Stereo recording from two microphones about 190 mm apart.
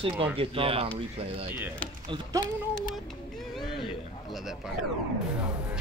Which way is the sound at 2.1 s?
20° right (ahead or behind).